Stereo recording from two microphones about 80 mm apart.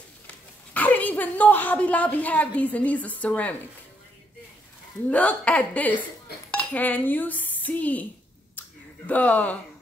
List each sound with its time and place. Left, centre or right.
0.7 s a woman's voice: left
5.1 s a woman's voice: centre
6.5 s dishes: left
8.5 s a sound: left